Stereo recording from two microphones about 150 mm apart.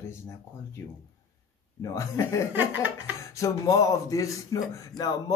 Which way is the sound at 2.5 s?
10° right (ahead or behind).